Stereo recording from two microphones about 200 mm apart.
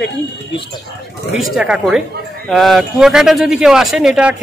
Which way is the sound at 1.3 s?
5° right (ahead or behind).